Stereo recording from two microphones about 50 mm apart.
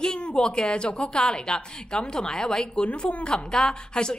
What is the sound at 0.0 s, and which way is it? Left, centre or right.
A woman's voice, centre.